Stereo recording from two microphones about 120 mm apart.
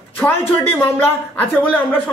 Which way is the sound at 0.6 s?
20° left (ahead or behind).